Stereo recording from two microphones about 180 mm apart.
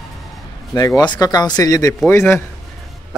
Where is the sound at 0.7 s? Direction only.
20° left (ahead or behind).